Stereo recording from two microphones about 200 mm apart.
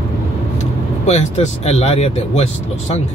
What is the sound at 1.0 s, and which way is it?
Speech, 35° left (ahead or behind).